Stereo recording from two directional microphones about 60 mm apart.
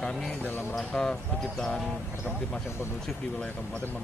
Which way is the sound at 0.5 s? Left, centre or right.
Left.